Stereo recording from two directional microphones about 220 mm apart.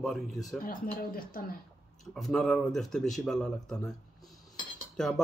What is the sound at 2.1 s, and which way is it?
Speech, centre (ahead or behind).